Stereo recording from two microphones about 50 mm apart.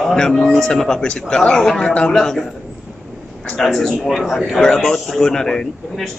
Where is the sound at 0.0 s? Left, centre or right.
Centre.